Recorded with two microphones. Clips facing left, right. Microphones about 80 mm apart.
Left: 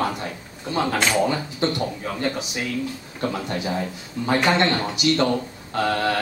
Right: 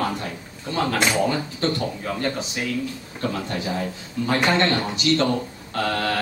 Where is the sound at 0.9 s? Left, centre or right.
Centre.